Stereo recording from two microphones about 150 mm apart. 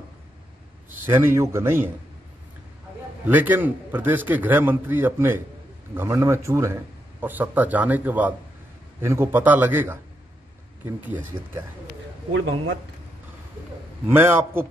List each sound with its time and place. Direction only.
1.0 s speech: 15° right (ahead or behind)
3.3 s speech: 10° right (ahead or behind)
14.0 s speech: 15° right (ahead or behind)